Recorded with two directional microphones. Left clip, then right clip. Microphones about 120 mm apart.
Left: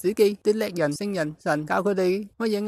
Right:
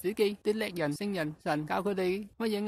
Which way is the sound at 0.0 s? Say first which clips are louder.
Left 9 dB; 50° left (ahead or behind).